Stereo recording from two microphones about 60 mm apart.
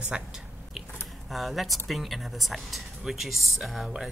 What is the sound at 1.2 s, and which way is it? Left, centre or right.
Speech, centre.